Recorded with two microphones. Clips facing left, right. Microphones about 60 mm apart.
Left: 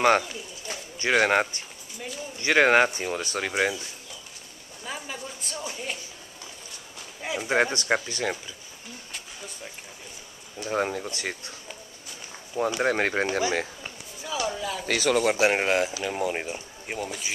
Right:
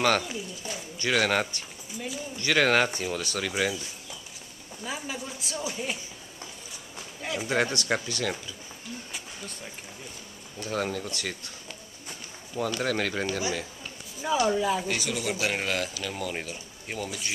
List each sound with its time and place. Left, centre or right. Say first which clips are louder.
0.7 s speech: left 3 dB; left
4.8 s a woman's voice: right 1 dB; centre
7.2 s a man's voice: left 1 dB; centre
7.4 s speech: left 3 dB; left
10.6 s speech: left 3 dB; left
12.5 s speech: left 4 dB; left
13.4 s speech: left 5 dB; left
14.2 s speech: right 5 dB; right
14.5 s speech: right 6 dB; centre
14.9 s a man's voice: left 7 dB; left
15.2 s speech: left 7 dB; left; by 17.3 s centre